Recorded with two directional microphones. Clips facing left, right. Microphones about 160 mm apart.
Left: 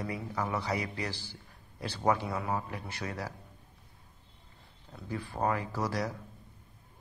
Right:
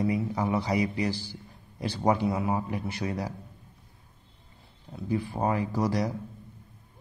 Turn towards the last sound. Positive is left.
turn(degrees=-15)  # may be behind; listen again after turning